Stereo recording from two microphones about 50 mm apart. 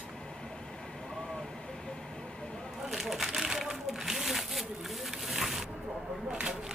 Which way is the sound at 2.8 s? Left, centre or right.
Centre.